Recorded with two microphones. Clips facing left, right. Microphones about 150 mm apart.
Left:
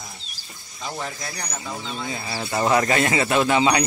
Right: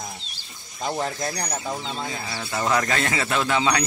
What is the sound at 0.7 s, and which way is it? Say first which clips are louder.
Speech: right 5 dB; 40° right (ahead or behind).